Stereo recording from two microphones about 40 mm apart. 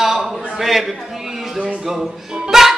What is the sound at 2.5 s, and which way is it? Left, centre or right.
Music, centre.